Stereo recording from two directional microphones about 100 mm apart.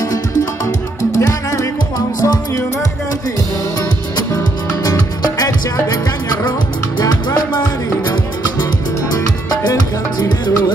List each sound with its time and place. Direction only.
1.1 s music: 35° left (ahead or behind)
4.8 s music: 40° left (ahead or behind)
9.1 s music: 40° left (ahead or behind)